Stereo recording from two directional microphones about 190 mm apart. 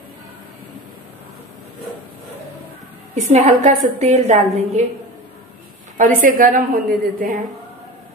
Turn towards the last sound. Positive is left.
turn(degrees=-45)  # may be behind; listen again after turning